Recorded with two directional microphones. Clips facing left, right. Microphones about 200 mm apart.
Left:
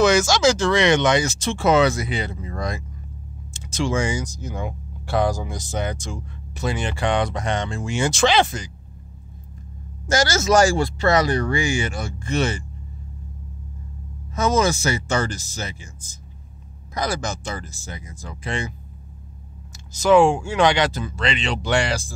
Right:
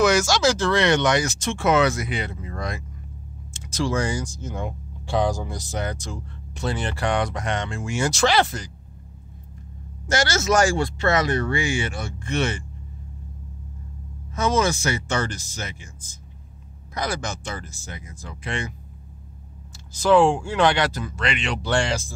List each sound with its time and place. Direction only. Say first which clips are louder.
0.0 s speech: left 2 dB; 20° left (ahead or behind)
3.7 s speech: left 1 dB; 20° left (ahead or behind)
4.6 s speech: left 1 dB; 5° left (ahead or behind); by 8.0 s 30° left (ahead or behind)
8.0 s speech: left 2 dB; 20° left (ahead or behind)
10.5 s speech: left 3 dB; 35° left (ahead or behind)
14.3 s speech: left 2 dB; 40° left (ahead or behind)
16.9 s speech: left 2 dB; 40° left (ahead or behind)
20.1 s speech: left 2 dB; 10° left (ahead or behind); by 21.5 s 30° left (ahead or behind)
21.6 s speech: left 1 dB; 10° left (ahead or behind)